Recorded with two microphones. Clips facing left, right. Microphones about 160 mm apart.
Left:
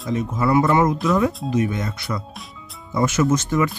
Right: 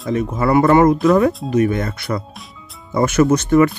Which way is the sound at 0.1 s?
60° right (ahead or behind).